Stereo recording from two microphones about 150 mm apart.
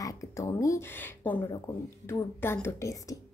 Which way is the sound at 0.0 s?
20° left (ahead or behind).